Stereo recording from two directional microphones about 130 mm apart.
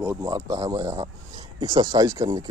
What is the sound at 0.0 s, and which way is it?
A man's voice, 20° right (ahead or behind).